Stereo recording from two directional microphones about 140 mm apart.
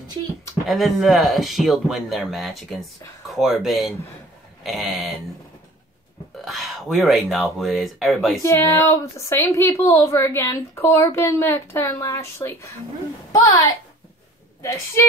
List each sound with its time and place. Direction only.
0.7 s speech: centre (ahead or behind)
6.4 s speech: centre (ahead or behind)
8.4 s a woman's voice: 20° left (ahead or behind)